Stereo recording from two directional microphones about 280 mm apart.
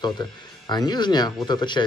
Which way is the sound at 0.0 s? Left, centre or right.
Centre.